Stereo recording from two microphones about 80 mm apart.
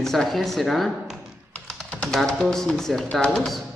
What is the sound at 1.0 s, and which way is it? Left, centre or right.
Tap, centre.